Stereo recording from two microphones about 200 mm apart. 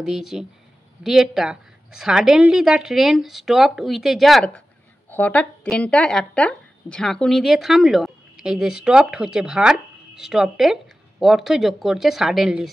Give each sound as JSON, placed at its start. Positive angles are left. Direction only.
{"t": 0.0, "sound": "speech", "side_deg": 0}